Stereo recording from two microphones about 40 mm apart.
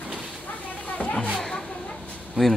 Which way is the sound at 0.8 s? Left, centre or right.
Left.